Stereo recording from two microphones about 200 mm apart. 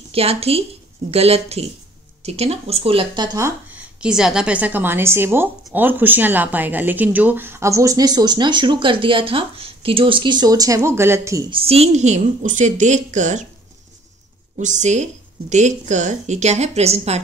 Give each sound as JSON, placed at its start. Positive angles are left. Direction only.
{"t": 0.1, "sound": "a woman's voice", "side_deg": -30}
{"t": 3.3, "sound": "speech", "side_deg": -15}
{"t": 4.0, "sound": "a woman's voice", "side_deg": -5}
{"t": 11.5, "sound": "a woman's voice", "side_deg": -30}
{"t": 14.6, "sound": "a woman's voice", "side_deg": -35}